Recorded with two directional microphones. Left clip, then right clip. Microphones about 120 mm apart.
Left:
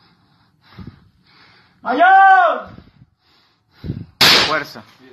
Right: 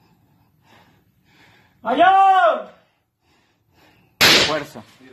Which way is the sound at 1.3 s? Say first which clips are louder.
Left 4 dB; 30° right (ahead or behind).